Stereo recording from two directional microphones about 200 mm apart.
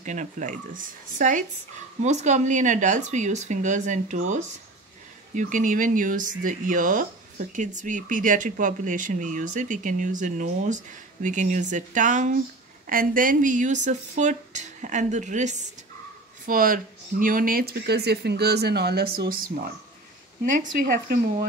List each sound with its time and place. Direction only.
0.0 s speech: 40° right (ahead or behind)
20.8 s speech: 50° right (ahead or behind)